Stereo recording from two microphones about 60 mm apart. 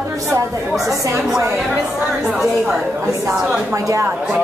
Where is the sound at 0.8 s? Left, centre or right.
Right.